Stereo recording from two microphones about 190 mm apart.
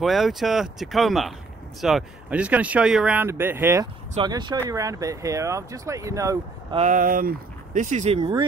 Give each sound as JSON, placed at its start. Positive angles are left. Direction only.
{"t": 0.0, "sound": "speech", "side_deg": 0}
{"t": 4.2, "sound": "speech", "side_deg": -25}
{"t": 6.7, "sound": "speech", "side_deg": -40}
{"t": 8.2, "sound": "speech", "side_deg": -20}